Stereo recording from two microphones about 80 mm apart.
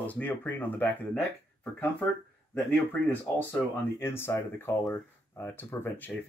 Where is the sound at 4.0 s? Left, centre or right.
Left.